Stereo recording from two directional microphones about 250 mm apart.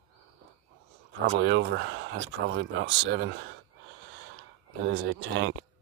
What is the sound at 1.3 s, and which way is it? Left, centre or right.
Speech, right.